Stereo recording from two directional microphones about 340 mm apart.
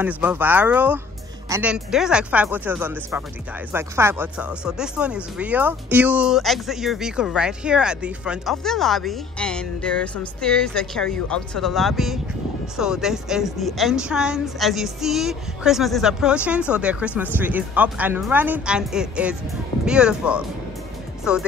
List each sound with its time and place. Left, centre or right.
0.0 s speech: centre